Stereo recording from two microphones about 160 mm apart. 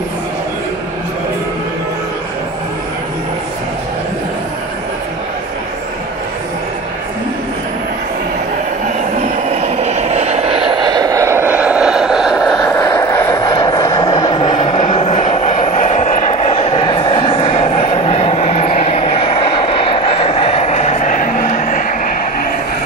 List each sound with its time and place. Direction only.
9.5 s vehicle: 45° right (ahead or behind); by 12.6 s centre (ahead or behind)
12.6 s vehicle: 20° left (ahead or behind); by 22.1 s 55° left (ahead or behind)